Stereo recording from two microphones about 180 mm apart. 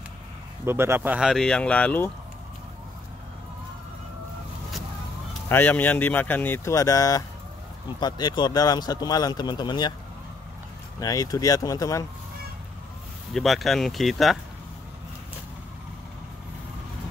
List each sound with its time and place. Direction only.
0.7 s speech: 15° right (ahead or behind); by 2.0 s 5° left (ahead or behind)
5.5 s a man's voice: 10° left (ahead or behind); by 9.9 s 25° left (ahead or behind)
11.0 s a man's voice: 20° left (ahead or behind)
13.3 s speech: centre (ahead or behind)